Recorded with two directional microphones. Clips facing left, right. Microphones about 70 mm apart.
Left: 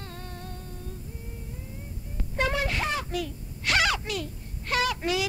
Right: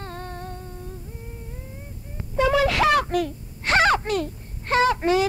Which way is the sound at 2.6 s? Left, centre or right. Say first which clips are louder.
Right 10 dB; right.